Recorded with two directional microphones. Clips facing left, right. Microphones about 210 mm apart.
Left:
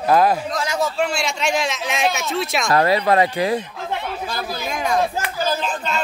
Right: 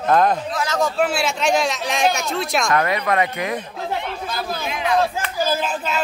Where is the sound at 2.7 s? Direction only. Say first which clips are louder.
Left 6 dB; 30° left (ahead or behind).